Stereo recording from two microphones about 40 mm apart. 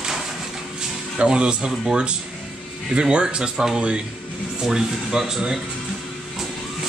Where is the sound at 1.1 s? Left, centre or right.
Right.